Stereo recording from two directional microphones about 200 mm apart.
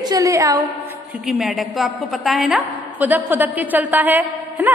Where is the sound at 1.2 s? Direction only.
Centre (ahead or behind).